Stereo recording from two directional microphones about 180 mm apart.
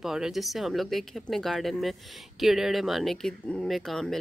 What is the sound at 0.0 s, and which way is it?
Speech, centre (ahead or behind).